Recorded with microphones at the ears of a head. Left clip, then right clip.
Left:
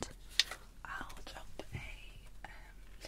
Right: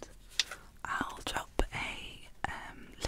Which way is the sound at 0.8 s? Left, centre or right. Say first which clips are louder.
Right 12 dB; right.